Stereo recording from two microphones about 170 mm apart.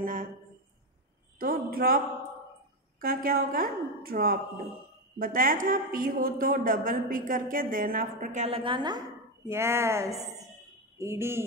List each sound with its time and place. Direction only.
0.0 s speech: 55° right (ahead or behind)
1.4 s a woman's voice: 60° right (ahead or behind)
3.0 s a woman's voice: 55° right (ahead or behind); by 9.0 s 25° right (ahead or behind)
9.5 s speech: 15° right (ahead or behind)